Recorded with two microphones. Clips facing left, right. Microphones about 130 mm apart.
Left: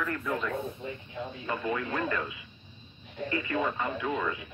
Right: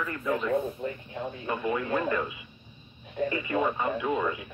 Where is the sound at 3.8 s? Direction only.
15° right (ahead or behind).